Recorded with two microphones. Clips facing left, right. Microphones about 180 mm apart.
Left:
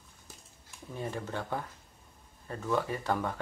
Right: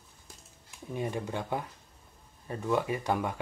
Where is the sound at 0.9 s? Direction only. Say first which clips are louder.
Right 3 dB; 15° right (ahead or behind).